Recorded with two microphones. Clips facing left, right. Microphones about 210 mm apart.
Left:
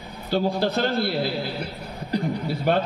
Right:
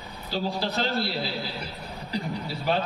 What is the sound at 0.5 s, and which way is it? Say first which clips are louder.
Speech: left 5 dB; 50° left (ahead or behind).